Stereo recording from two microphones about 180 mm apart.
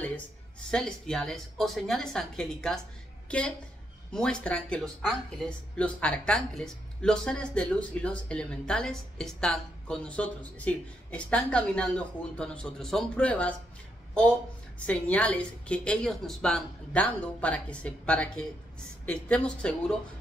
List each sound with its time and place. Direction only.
0.7 s a woman's voice: 5° left (ahead or behind)
14.9 s speech: 5° left (ahead or behind)